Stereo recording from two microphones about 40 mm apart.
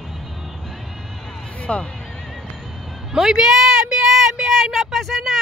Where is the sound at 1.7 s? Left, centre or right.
Left.